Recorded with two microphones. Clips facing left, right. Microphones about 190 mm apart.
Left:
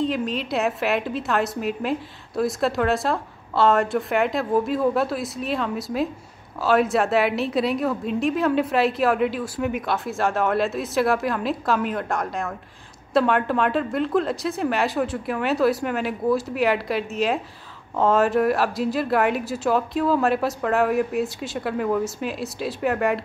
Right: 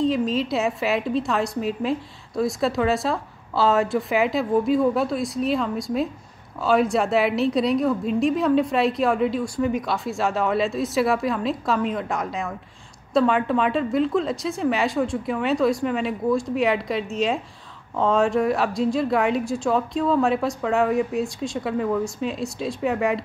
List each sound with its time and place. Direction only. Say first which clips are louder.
0.0 s a woman's voice: right 3 dB; centre (ahead or behind)